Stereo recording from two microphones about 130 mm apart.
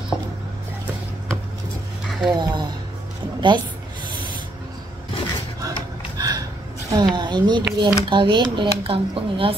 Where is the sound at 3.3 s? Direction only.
35° right (ahead or behind).